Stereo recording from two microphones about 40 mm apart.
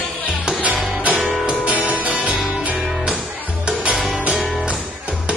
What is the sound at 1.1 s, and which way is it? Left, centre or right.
Music, centre.